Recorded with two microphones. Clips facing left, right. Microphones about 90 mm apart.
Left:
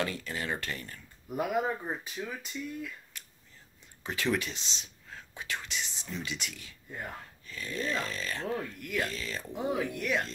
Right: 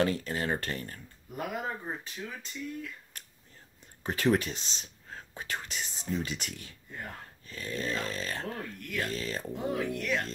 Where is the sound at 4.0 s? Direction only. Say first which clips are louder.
Right 4 dB; 45° right (ahead or behind).